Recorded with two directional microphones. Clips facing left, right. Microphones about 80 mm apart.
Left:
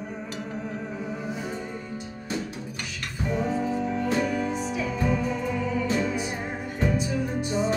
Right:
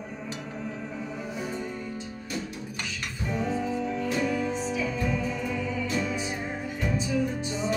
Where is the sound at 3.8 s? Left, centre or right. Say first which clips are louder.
Left 2 dB; left.